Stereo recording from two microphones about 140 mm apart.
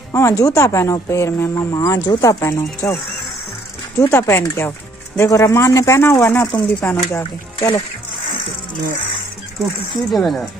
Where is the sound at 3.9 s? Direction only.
20° left (ahead or behind).